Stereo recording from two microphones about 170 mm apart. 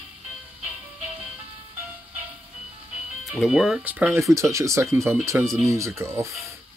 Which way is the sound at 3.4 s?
Centre (ahead or behind).